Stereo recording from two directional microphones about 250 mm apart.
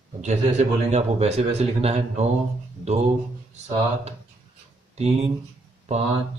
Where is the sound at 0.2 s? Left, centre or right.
Right.